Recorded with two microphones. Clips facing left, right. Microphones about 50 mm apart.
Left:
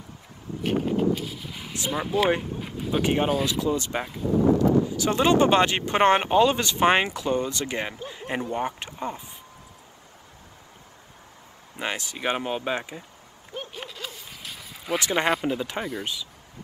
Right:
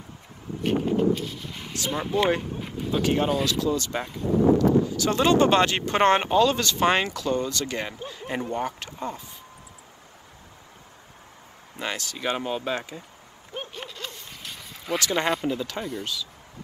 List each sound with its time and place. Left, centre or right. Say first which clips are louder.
0.6 s a sound: right 1 dB; centre
1.9 s speech: even; centre
2.9 s speech: even; left
4.0 s speech: left 1 dB; centre
4.6 s speech: even; left
11.7 s speech: left 1 dB; left
13.7 s zipper: even; centre
15.0 s speech: left 1 dB; centre